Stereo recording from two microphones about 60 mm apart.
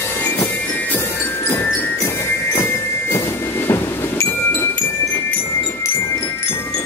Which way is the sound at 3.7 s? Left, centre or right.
Left.